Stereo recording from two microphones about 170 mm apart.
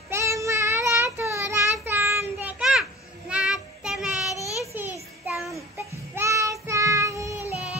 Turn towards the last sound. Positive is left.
turn(degrees=-10)  # may be behind; listen again after turning